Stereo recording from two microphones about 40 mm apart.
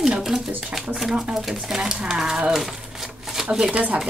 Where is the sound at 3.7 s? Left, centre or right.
Right.